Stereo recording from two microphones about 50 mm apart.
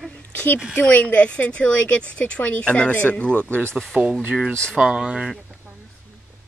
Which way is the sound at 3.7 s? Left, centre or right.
Centre.